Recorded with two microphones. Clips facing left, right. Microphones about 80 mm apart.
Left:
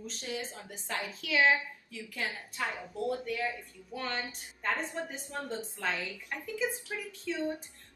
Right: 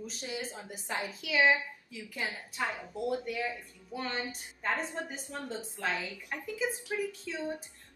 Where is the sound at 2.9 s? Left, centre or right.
Centre.